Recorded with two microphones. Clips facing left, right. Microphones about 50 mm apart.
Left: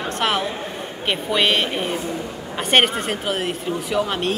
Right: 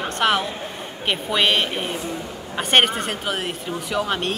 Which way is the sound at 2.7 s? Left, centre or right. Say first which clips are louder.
Left 1 dB; centre.